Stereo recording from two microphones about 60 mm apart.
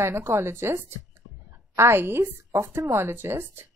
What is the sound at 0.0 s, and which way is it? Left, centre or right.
A woman's voice, right.